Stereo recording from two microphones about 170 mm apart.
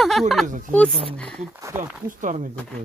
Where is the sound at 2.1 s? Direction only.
50° right (ahead or behind).